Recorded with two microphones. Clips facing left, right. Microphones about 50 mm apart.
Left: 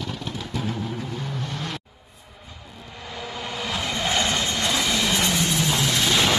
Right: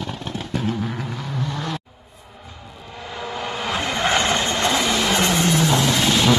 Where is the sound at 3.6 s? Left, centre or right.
Right.